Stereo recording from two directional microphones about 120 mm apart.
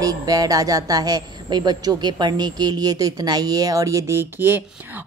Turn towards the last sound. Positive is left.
turn(degrees=-20)  # may be behind; listen again after turning